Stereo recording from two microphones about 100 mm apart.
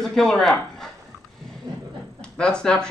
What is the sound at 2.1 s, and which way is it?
Speech, 10° left (ahead or behind).